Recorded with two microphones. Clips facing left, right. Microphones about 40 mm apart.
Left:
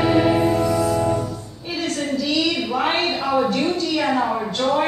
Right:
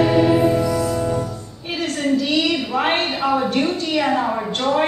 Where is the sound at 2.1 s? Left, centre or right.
Right.